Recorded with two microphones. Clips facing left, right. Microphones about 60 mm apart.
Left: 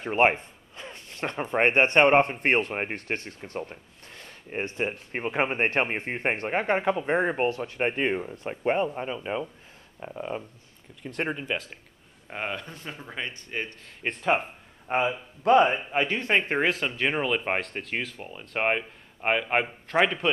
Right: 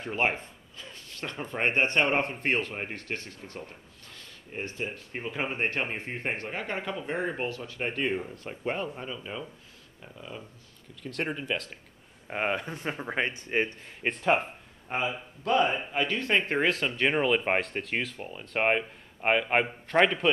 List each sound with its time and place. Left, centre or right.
0.0 s speech: left
11.1 s speech: centre
12.3 s speech: centre
14.0 s speech: centre
15.0 s speech: left
16.1 s speech: centre